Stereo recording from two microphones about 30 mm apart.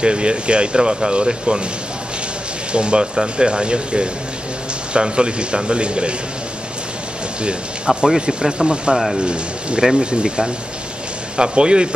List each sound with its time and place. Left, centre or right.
0.0 s speech: right
2.7 s speech: right
7.4 s speech: right
8.9 s speech: centre
9.2 s speech: right